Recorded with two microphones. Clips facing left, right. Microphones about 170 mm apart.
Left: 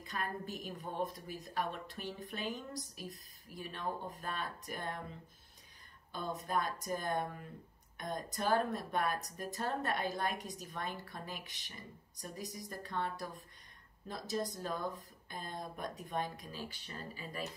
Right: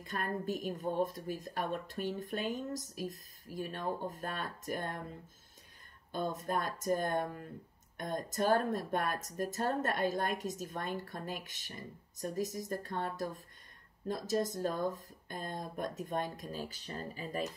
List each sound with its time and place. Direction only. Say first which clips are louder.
0.0 s a woman's voice: right 4 dB; 45° right (ahead or behind)
6.1 s a woman's voice: right 2 dB; 50° right (ahead or behind)